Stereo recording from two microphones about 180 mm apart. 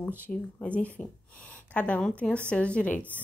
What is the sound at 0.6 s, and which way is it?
Speech, 5° left (ahead or behind).